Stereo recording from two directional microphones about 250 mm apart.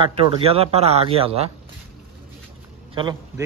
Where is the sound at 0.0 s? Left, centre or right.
Right.